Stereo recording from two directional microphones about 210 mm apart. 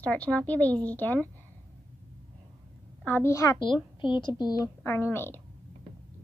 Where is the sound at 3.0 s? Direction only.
10° left (ahead or behind).